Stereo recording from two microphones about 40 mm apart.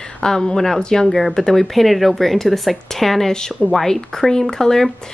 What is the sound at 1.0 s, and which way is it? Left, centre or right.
Speech, centre.